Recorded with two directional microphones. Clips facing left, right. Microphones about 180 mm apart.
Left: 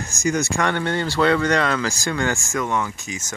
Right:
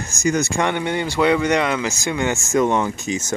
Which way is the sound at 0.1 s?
20° right (ahead or behind).